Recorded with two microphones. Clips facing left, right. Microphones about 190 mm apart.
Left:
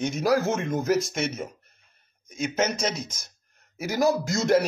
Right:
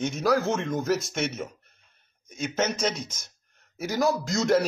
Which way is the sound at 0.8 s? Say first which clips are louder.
Left 2 dB; centre (ahead or behind).